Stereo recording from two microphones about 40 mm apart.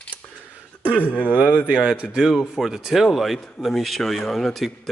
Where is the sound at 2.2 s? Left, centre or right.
Centre.